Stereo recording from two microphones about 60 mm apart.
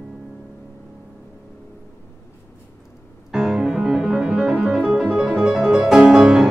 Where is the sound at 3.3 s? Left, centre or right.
Centre.